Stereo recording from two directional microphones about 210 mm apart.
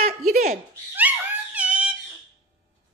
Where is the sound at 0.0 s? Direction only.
40° right (ahead or behind).